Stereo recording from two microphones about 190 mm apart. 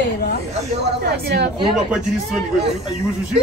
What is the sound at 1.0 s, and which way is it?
Speech, 60° right (ahead or behind).